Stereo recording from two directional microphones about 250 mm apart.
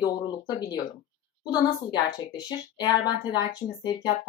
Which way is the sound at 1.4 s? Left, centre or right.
Centre.